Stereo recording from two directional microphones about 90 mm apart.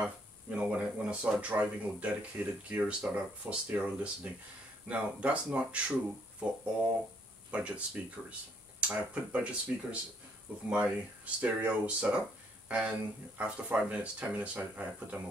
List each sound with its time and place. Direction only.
0.0 s speech: 15° right (ahead or behind)